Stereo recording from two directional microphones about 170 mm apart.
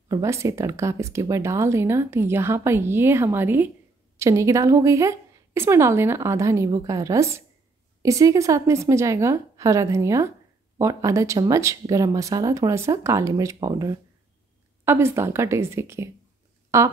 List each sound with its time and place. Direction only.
0.1 s speech: 15° right (ahead or behind)